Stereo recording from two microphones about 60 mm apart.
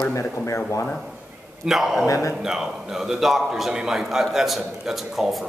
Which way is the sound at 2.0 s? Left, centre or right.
Left.